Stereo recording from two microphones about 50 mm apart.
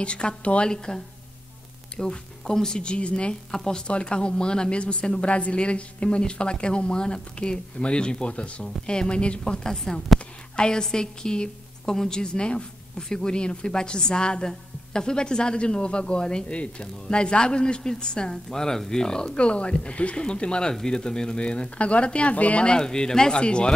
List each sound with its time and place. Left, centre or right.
0.0 s a woman's voice: centre
10.5 s a woman's voice: centre